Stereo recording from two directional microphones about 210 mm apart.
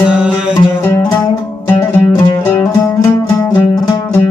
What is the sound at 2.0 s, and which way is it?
Music, 5° left (ahead or behind).